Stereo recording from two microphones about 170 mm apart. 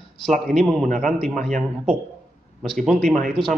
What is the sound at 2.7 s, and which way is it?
Speech, 5° left (ahead or behind).